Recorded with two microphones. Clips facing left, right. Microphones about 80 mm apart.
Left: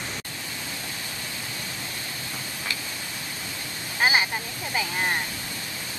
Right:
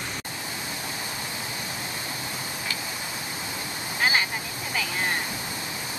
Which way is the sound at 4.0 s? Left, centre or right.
Centre.